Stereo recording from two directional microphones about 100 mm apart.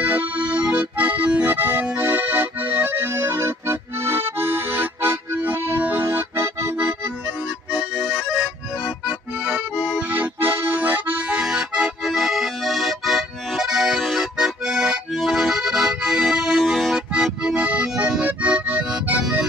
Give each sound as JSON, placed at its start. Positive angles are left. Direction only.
{"t": 0.0, "sound": "accordion", "side_deg": -15}
{"t": 7.7, "sound": "accordion", "side_deg": -10}
{"t": 10.0, "sound": "accordion", "side_deg": -20}